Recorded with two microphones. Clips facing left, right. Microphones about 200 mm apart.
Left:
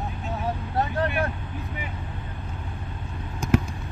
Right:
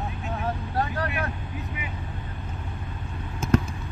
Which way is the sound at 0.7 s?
25° left (ahead or behind).